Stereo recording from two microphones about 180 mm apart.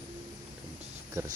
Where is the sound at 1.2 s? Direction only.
15° right (ahead or behind).